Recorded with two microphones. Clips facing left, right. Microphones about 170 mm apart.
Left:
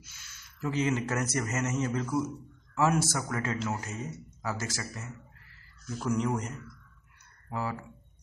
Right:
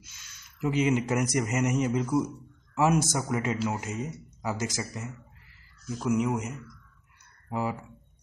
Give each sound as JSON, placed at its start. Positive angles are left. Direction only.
{"t": 0.6, "sound": "speech", "side_deg": -15}
{"t": 5.9, "sound": "speech", "side_deg": -5}